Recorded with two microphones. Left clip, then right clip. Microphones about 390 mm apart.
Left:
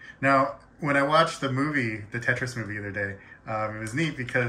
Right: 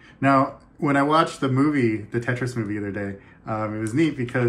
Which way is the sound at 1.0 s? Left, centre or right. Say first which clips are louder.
Right 2 dB; centre.